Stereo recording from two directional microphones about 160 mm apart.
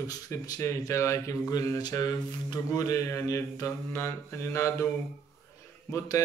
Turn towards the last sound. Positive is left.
turn(degrees=20)  # may be behind; listen again after turning